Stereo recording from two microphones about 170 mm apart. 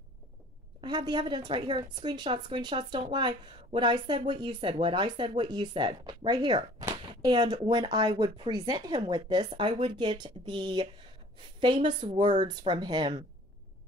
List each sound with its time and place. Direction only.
0.7 s a woman's voice: 25° right (ahead or behind)